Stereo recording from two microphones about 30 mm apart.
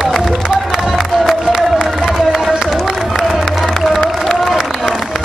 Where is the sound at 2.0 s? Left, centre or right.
Centre.